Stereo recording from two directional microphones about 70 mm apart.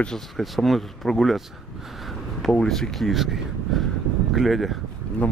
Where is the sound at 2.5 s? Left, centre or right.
Centre.